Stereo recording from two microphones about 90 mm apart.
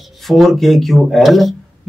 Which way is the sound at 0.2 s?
5° left (ahead or behind).